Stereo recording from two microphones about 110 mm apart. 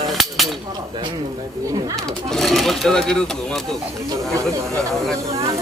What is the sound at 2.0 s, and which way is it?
Speech, 5° left (ahead or behind).